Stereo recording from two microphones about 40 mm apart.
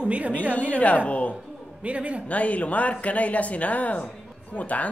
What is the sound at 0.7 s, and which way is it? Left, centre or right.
Speech, left.